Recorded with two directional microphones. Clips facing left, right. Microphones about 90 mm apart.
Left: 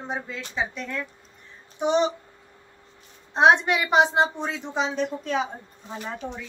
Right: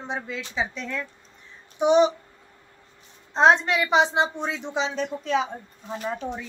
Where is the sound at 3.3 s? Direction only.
10° left (ahead or behind).